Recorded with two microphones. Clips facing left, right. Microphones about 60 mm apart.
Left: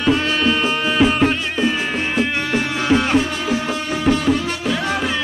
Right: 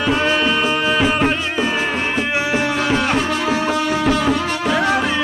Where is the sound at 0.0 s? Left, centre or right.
Centre.